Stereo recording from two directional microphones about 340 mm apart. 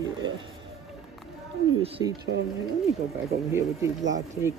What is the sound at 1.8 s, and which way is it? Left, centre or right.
Speech, centre.